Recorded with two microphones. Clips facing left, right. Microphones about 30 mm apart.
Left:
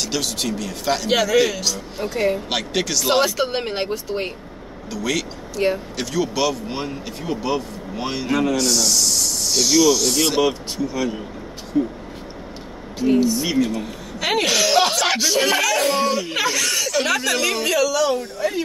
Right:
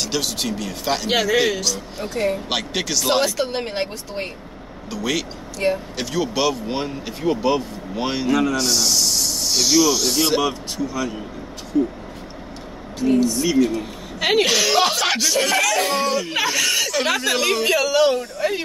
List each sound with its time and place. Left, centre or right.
0.0 s speech: centre
1.6 s speech: centre
5.6 s speech: centre
6.1 s speech: centre
11.7 s speech: centre
13.0 s speech: centre
14.2 s speech: centre
16.3 s speech: centre
17.6 s speech: right